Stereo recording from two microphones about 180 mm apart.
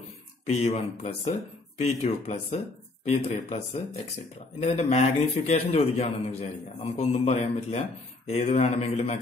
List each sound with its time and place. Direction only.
0.5 s speech: 35° left (ahead or behind)